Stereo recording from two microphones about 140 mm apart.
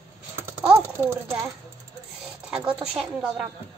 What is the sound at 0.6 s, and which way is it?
Speech, 20° right (ahead or behind).